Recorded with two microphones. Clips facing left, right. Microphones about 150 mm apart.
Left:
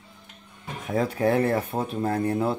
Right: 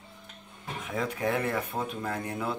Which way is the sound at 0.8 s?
35° left (ahead or behind).